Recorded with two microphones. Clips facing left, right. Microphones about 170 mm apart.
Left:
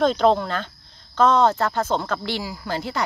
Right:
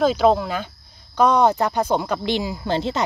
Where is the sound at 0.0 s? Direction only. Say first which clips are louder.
Right 1 dB; 5° right (ahead or behind).